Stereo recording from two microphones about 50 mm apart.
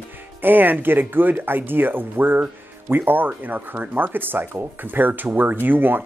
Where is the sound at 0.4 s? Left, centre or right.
Right.